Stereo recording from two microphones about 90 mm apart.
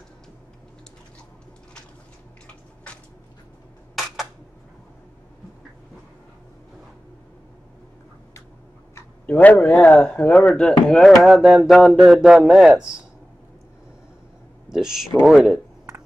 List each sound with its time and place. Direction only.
2.4 s a sound: 15° left (ahead or behind)
9.2 s speech: 15° left (ahead or behind); by 13.0 s 10° right (ahead or behind)
14.7 s speech: 5° right (ahead or behind)